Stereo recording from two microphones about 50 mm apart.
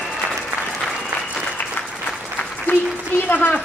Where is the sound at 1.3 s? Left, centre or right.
Left.